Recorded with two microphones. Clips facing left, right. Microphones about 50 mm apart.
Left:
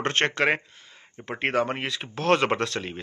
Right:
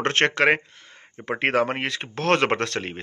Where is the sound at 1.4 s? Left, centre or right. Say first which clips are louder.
Right 3 dB; right.